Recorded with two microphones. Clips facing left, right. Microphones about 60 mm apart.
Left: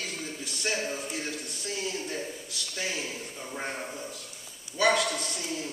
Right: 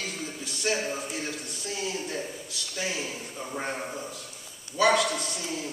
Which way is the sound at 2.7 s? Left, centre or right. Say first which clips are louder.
Right 2 dB; centre.